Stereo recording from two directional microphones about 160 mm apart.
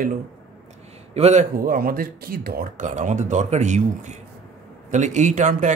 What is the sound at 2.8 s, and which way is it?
A man's voice, 50° right (ahead or behind).